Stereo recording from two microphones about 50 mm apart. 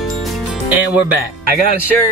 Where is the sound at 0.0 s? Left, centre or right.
Centre.